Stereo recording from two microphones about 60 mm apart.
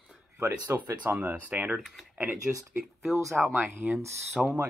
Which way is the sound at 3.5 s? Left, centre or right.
Right.